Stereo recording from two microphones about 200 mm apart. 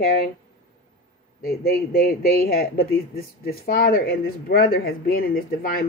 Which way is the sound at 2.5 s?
50° left (ahead or behind).